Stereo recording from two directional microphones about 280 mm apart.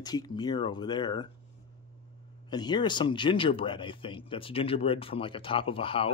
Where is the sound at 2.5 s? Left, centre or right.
Centre.